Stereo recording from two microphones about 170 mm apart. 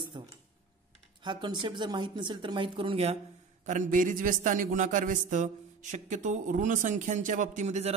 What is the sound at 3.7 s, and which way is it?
A man's voice, 50° right (ahead or behind).